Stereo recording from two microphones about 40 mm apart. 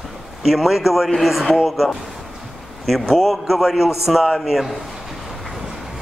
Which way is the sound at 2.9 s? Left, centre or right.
Centre.